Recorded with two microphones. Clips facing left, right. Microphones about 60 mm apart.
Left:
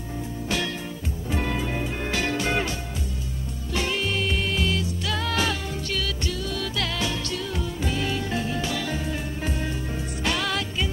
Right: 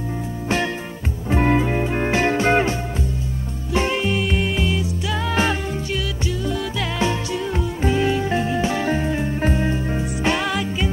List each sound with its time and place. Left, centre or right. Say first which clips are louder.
1.3 s music: right 9 dB; right
3.7 s music: right 6 dB; right
5.3 s music: right 6 dB; right
5.9 s music: right 4 dB; centre
10.5 s music: right 5 dB; centre